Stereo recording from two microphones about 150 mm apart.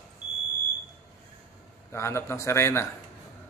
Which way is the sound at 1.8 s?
20° left (ahead or behind).